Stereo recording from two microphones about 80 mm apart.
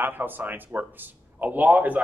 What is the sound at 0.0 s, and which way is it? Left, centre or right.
Speech, right.